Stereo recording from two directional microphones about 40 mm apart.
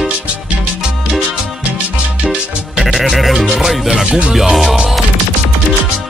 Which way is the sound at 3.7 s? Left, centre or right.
Centre.